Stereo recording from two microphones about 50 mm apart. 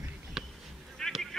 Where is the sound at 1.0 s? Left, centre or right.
Centre.